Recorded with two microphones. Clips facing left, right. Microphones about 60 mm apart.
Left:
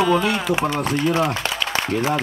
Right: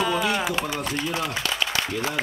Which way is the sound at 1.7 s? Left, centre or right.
Left.